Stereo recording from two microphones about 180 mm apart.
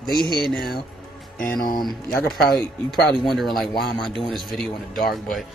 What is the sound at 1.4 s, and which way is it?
Speech, 50° left (ahead or behind).